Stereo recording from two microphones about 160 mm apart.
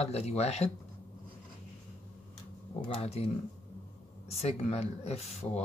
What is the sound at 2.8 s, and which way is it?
Speech, 40° left (ahead or behind).